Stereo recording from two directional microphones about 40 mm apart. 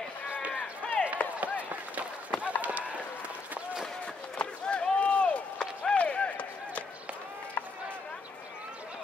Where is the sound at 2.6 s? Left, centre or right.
Right.